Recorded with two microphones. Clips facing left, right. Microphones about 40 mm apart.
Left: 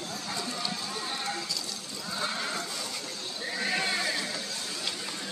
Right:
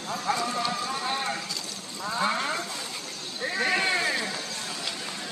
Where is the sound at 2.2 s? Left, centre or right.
Right.